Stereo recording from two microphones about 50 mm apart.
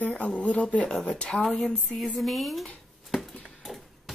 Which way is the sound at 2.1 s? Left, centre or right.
Centre.